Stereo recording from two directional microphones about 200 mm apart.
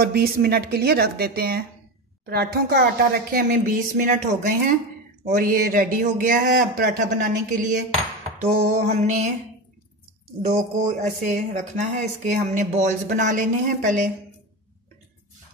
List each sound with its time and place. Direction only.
0.0 s speech: 50° right (ahead or behind)
8.4 s speech: 35° right (ahead or behind)
10.5 s speech: 40° right (ahead or behind)